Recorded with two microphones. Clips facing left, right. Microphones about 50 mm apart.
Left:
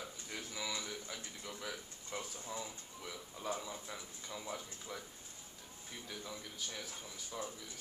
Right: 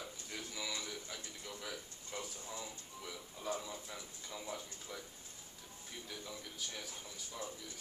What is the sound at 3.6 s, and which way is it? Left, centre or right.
A man's voice, centre.